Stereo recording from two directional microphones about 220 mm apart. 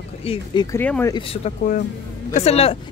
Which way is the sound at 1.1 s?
25° left (ahead or behind).